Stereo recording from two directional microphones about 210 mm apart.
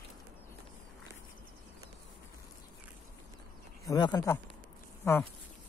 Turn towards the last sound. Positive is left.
turn(degrees=10)  # may be behind; listen again after turning